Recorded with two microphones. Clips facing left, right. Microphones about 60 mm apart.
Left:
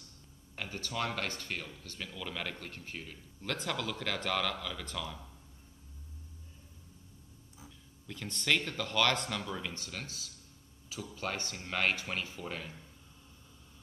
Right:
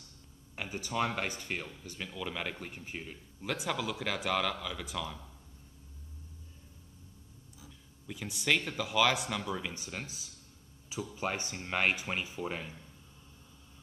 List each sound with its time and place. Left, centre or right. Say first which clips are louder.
0.6 s a man's voice: right 3 dB; centre
8.1 s a man's voice: right 1 dB; centre